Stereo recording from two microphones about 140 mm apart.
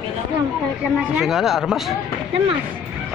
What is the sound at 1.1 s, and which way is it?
Speech, centre (ahead or behind).